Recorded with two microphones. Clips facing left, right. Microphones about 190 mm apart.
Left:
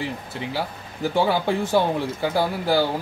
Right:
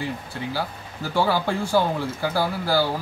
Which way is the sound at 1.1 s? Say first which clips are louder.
Left 1 dB; 20° left (ahead or behind).